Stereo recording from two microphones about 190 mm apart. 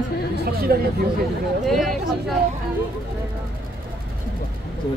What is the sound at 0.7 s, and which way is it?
Speech, 55° right (ahead or behind).